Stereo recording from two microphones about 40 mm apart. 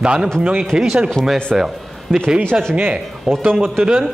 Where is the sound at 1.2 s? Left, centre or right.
Centre.